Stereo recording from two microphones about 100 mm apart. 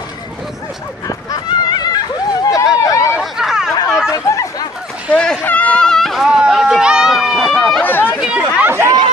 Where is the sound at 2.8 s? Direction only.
30° left (ahead or behind).